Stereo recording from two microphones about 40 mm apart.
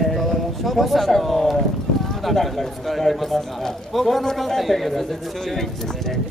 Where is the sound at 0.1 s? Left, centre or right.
Centre.